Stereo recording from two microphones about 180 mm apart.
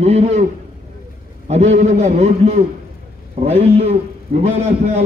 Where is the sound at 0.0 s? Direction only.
35° right (ahead or behind).